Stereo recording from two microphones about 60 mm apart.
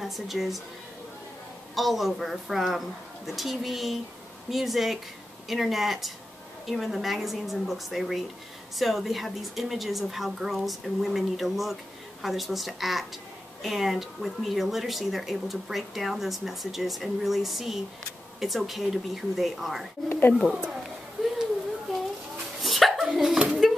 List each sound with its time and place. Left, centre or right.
0.0 s a woman's voice: centre
1.8 s a woman's voice: centre
20.1 s speech: left
22.6 s a sound: centre